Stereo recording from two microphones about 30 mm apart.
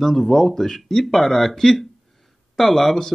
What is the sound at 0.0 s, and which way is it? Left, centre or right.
Speech, centre.